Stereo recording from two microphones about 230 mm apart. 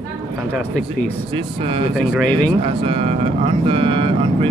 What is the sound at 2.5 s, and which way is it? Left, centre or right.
Speech, right.